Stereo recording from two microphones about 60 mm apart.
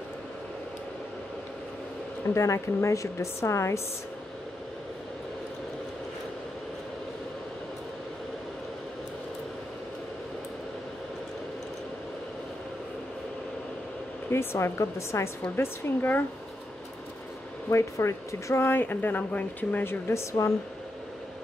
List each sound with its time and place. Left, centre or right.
2.3 s speech: left
14.3 s speech: left
15.5 s speech: left
17.6 s speech: left
18.6 s speech: left